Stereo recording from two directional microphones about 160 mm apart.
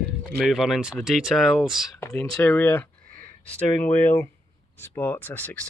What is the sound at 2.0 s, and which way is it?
Speech, 15° left (ahead or behind).